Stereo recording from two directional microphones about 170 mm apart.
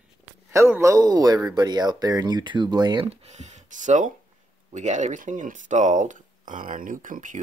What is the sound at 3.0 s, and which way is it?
Speech, 40° right (ahead or behind).